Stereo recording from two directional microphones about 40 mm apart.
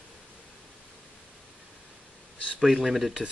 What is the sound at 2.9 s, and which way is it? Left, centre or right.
Speech, centre.